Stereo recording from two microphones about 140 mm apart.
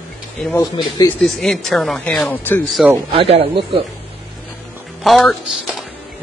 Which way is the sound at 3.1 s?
45° right (ahead or behind).